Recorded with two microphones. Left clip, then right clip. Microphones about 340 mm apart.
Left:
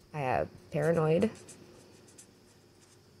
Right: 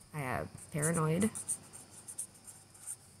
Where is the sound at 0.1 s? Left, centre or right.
Centre.